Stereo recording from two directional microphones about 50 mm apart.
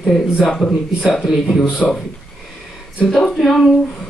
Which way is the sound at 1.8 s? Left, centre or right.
Centre.